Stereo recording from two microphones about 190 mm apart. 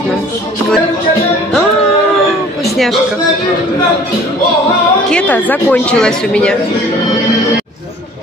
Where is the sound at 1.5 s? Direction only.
Centre (ahead or behind).